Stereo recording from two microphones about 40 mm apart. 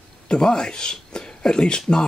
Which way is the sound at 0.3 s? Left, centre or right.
Centre.